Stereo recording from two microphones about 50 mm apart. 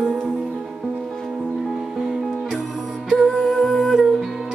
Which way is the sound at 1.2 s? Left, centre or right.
Centre.